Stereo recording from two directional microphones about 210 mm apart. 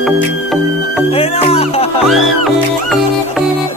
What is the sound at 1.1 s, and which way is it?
Music, 30° left (ahead or behind).